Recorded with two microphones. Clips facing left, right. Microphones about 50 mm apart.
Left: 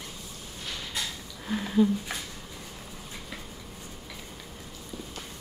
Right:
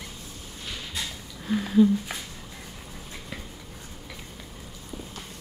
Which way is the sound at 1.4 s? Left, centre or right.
Centre.